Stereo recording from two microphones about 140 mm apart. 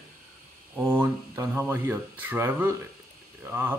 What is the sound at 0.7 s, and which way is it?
Speech, 15° right (ahead or behind).